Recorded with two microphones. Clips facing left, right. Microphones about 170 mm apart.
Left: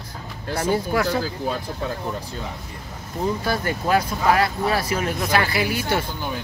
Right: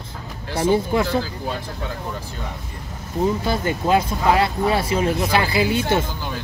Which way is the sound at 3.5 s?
20° right (ahead or behind).